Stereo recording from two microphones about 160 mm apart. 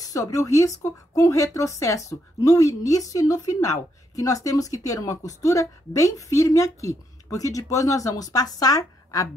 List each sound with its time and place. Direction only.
0.0 s speech: 20° left (ahead or behind)